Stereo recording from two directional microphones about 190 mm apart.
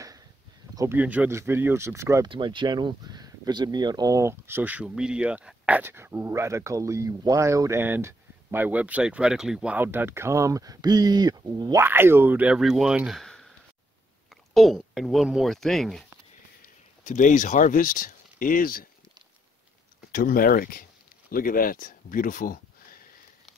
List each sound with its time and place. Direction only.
0.7 s speech: 10° right (ahead or behind)
16.6 s speech: 40° left (ahead or behind)
20.1 s speech: 50° left (ahead or behind)